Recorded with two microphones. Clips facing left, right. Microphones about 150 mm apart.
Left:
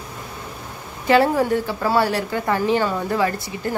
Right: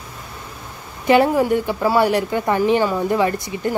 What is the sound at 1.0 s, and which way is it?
A woman's voice, 15° right (ahead or behind).